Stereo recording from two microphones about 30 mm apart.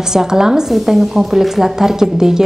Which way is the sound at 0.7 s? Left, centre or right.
Centre.